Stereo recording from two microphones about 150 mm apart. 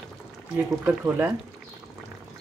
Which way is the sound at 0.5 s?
15° right (ahead or behind).